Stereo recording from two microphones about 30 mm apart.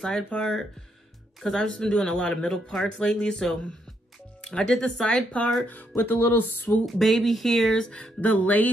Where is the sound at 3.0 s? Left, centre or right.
Left.